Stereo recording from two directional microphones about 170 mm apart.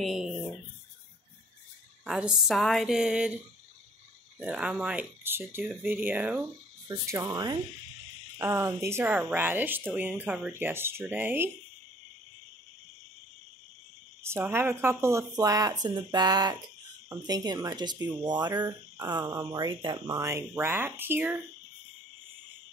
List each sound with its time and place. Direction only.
0.0 s a woman's voice: centre (ahead or behind)
2.0 s a woman's voice: 5° right (ahead or behind)
4.4 s speech: 10° right (ahead or behind)
14.5 s speech: 15° right (ahead or behind)